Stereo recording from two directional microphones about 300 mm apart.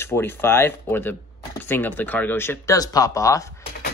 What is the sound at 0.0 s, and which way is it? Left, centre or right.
Speech, centre.